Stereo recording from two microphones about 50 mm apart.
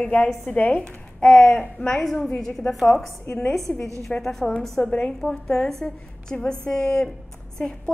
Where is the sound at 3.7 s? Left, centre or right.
Left.